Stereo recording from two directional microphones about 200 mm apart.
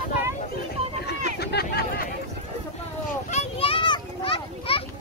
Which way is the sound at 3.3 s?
30° left (ahead or behind).